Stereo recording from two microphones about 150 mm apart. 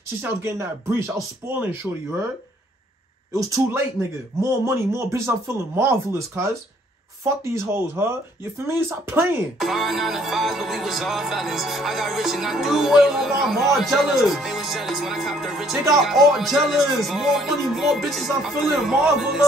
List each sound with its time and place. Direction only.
0.2 s speech: 15° right (ahead or behind)
3.3 s speech: 20° right (ahead or behind)
7.5 s speech: 20° right (ahead or behind)
9.6 s music: centre (ahead or behind)